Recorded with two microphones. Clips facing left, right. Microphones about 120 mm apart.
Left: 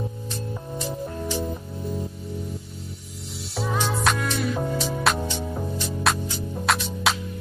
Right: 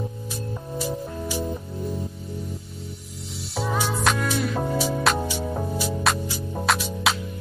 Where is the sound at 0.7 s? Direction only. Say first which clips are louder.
Right 2 dB; 5° right (ahead or behind).